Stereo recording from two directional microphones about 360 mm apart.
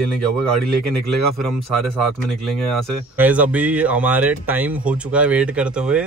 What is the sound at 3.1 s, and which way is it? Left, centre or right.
Speech, centre.